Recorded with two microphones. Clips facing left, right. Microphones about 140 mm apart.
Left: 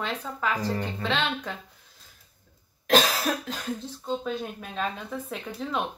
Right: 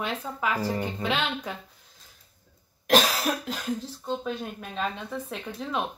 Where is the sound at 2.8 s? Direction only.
10° right (ahead or behind).